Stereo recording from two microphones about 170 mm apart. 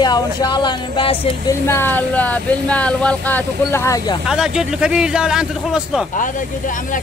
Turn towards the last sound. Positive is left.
turn(degrees=50)  # may be behind; listen again after turning